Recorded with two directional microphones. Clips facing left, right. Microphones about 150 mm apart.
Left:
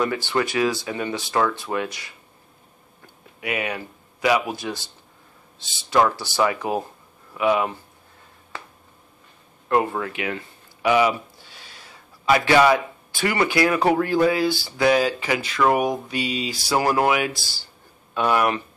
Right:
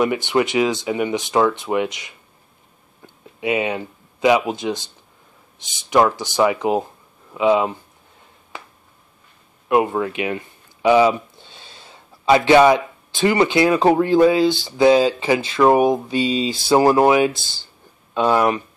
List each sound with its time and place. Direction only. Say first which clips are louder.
0.0 s speech: right 5 dB; 20° right (ahead or behind)
3.3 s speech: right 6 dB; 25° right (ahead or behind)
9.7 s speech: right 4 dB; 20° right (ahead or behind)